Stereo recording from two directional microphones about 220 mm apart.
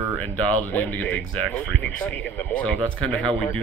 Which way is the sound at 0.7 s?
5° left (ahead or behind).